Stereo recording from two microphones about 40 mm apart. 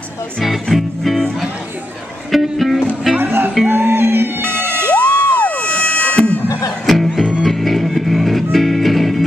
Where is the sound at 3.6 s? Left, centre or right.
Right.